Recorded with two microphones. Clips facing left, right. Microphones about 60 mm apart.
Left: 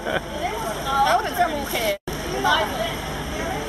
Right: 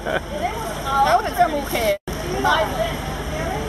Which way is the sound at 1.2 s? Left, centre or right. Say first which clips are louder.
Right 3 dB; centre.